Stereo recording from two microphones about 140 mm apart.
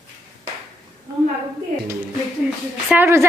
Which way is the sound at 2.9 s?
20° right (ahead or behind).